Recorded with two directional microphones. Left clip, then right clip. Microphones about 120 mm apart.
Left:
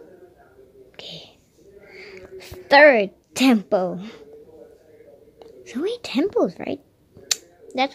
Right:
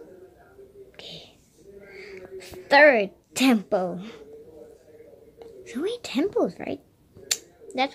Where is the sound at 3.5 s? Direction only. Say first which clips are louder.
Left 4 dB; 25° left (ahead or behind).